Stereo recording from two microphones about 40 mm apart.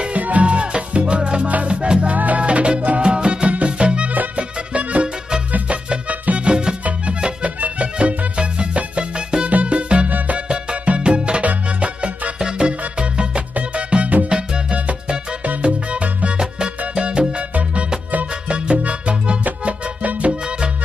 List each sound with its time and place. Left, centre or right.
0.2 s salsa music: right
1.7 s music: right
2.1 s music: right
2.4 s music: right
6.0 s music: right
6.4 s music: right
11.0 s music: right
12.4 s music: right
16.3 s music: centre
16.9 s salsa music: right
18.5 s music: right